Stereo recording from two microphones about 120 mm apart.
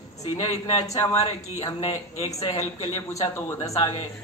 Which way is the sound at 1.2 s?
50° left (ahead or behind).